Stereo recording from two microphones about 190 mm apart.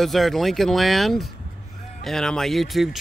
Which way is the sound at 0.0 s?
Centre (ahead or behind).